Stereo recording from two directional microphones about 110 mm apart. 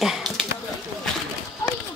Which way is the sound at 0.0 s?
5° right (ahead or behind).